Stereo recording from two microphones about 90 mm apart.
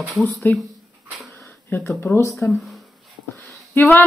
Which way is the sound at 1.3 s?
25° left (ahead or behind).